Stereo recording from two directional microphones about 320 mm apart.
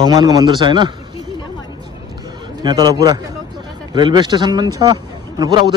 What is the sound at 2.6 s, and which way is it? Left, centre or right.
A man's voice, centre.